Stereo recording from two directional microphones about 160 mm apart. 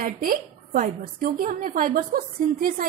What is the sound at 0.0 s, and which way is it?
A woman's voice, 65° right (ahead or behind).